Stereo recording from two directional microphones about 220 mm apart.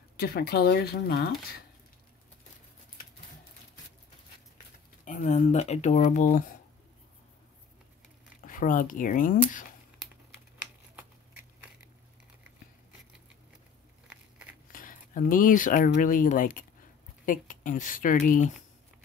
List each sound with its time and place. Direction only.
0.2 s speech: 45° left (ahead or behind)
5.0 s speech: 35° left (ahead or behind)
8.5 s speech: 35° left (ahead or behind)
14.0 s a sound: 5° right (ahead or behind)
14.7 s speech: 40° left (ahead or behind)